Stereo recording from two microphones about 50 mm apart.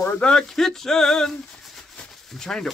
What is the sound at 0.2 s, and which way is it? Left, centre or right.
Speech, centre.